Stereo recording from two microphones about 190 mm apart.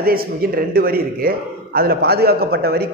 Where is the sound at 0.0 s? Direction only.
50° right (ahead or behind).